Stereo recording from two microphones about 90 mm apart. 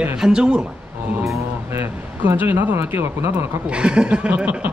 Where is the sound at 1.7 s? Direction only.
25° right (ahead or behind).